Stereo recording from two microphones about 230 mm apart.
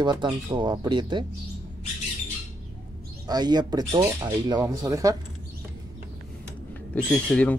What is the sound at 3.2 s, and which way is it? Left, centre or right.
Speech, centre.